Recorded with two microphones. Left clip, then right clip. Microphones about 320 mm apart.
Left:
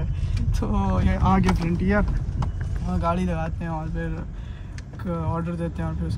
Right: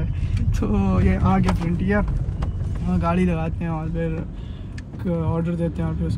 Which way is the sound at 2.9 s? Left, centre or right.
Left.